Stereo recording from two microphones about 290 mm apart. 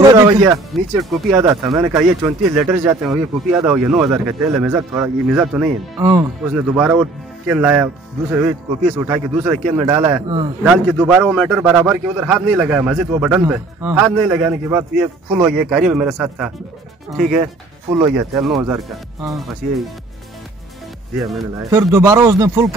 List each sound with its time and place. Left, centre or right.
0.0 s speech: centre
9.3 s speech: centre
10.6 s speech: centre
17.8 s speech: centre
18.1 s speech: centre
21.5 s speech: centre